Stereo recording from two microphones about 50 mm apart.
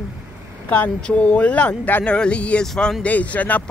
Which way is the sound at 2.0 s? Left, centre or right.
Left.